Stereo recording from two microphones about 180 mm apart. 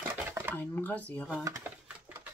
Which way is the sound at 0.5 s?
10° left (ahead or behind).